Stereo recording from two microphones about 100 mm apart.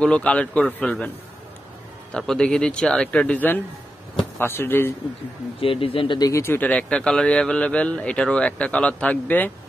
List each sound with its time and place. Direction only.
0.0 s a man's voice: 10° left (ahead or behind)
2.1 s a man's voice: 10° left (ahead or behind)
5.6 s speech: 65° left (ahead or behind)
6.1 s a man's voice: 35° left (ahead or behind); by 9.5 s 15° left (ahead or behind)